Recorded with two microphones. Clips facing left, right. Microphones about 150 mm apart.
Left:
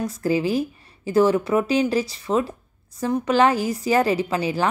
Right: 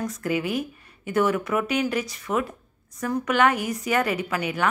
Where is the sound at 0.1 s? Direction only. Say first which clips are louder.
Left 5 dB; 30° left (ahead or behind).